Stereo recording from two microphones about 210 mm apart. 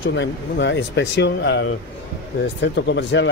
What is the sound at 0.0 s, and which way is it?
Speech, 60° left (ahead or behind).